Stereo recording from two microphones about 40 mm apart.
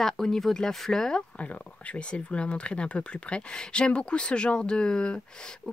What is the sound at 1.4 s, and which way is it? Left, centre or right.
Speech, left.